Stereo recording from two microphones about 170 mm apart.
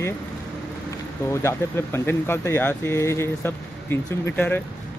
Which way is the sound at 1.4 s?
15° left (ahead or behind).